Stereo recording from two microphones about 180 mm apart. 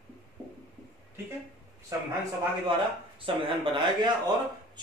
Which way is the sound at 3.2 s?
30° right (ahead or behind).